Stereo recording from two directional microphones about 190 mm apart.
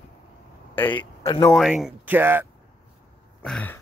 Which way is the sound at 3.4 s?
5° left (ahead or behind).